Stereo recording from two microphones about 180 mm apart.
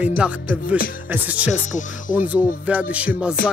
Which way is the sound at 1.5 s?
45° left (ahead or behind).